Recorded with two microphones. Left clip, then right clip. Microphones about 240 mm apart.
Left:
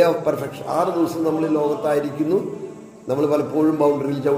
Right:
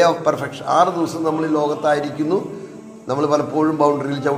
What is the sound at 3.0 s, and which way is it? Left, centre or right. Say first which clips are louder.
A man's voice: right 1 dB; right.